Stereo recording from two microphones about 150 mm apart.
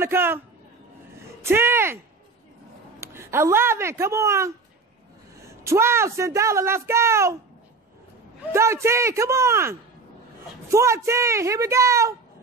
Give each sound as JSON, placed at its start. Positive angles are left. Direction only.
{"t": 0.0, "sound": "speech", "side_deg": -15}
{"t": 1.4, "sound": "speech", "side_deg": -15}
{"t": 3.0, "sound": "speech", "side_deg": -15}
{"t": 5.5, "sound": "speech", "side_deg": -20}
{"t": 8.5, "sound": "speech", "side_deg": -20}